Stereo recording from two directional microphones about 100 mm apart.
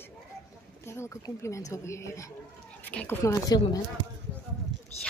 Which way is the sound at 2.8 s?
15° left (ahead or behind).